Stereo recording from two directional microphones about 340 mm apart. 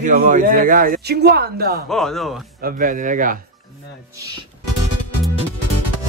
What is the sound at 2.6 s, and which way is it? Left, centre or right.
Speech, right.